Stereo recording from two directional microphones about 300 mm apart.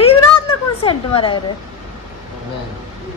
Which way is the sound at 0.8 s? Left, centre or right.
Centre.